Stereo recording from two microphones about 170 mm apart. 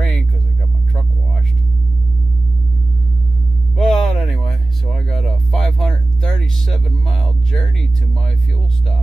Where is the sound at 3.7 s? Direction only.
Centre (ahead or behind).